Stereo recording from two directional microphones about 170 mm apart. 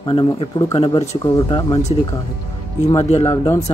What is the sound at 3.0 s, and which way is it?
Speech, 40° left (ahead or behind).